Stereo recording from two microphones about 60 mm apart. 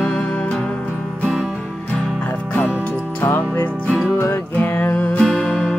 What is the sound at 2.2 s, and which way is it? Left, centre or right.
Music, left.